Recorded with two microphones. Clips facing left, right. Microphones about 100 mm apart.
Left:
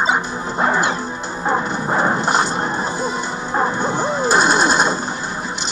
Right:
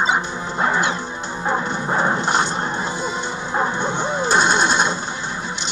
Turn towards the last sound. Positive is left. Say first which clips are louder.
# left 2 dB
turn(degrees=5)  # may be behind; listen again after turning